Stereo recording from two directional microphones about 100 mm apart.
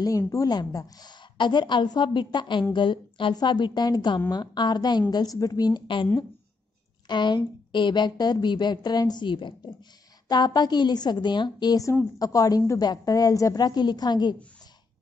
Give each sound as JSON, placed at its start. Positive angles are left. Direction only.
{"t": 0.3, "sound": "a woman's voice", "side_deg": 35}
{"t": 7.1, "sound": "a woman's voice", "side_deg": 50}